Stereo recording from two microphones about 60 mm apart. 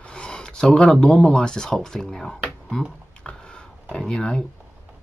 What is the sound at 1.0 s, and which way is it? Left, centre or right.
Speech, centre.